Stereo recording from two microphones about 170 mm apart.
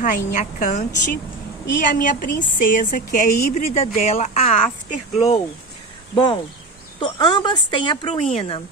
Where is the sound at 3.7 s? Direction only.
40° left (ahead or behind).